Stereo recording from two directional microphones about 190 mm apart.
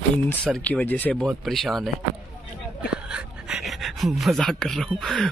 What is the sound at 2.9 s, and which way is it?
Speech, 5° right (ahead or behind).